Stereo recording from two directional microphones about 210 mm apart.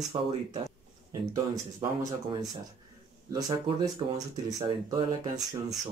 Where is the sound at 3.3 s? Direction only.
20° right (ahead or behind).